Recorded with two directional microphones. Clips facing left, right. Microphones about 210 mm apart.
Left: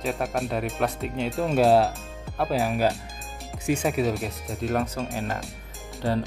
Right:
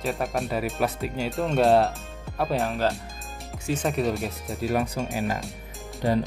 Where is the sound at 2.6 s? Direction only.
15° left (ahead or behind).